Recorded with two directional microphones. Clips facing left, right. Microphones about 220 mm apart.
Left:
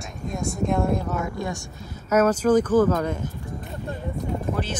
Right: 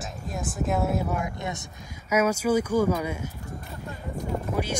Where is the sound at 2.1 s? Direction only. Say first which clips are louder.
Left 4 dB; 10° right (ahead or behind).